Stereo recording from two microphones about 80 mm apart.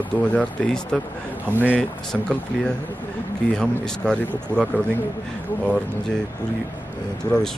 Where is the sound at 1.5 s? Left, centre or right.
Right.